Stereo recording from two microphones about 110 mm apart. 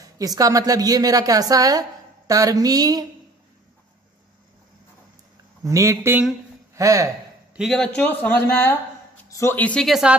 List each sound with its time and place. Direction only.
0.0 s a woman's voice: 35° right (ahead or behind)
5.6 s speech: 30° right (ahead or behind)
7.5 s speech: centre (ahead or behind); by 9.6 s 25° left (ahead or behind)
9.6 s speech: 10° left (ahead or behind)
9.8 s a woman's voice: 5° right (ahead or behind)